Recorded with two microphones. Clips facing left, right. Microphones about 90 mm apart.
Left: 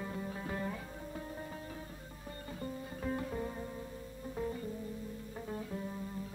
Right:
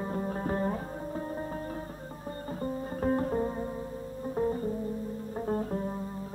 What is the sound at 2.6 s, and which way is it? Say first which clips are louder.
Music: right 9 dB; 40° right (ahead or behind).